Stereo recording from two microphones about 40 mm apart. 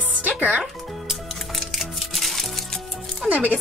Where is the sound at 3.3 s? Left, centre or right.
Right.